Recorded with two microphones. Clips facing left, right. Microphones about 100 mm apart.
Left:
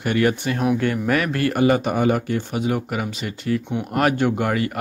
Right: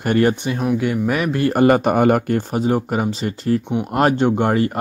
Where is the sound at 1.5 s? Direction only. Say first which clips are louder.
Right 5 dB; 50° right (ahead or behind).